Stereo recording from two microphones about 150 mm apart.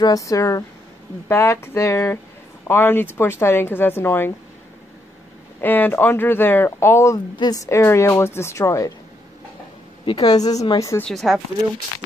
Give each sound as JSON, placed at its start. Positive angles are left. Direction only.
{"t": 0.0, "sound": "a woman's voice", "side_deg": 20}
{"t": 5.6, "sound": "a woman's voice", "side_deg": 10}
{"t": 10.0, "sound": "speech", "side_deg": 25}
{"t": 11.0, "sound": "speech", "side_deg": 5}